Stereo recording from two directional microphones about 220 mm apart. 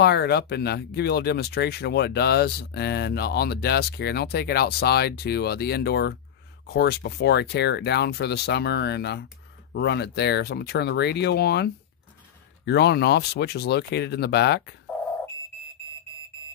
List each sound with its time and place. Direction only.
0.0 s speech: 50° left (ahead or behind)